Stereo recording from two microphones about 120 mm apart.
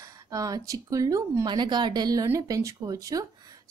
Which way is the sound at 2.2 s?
25° right (ahead or behind).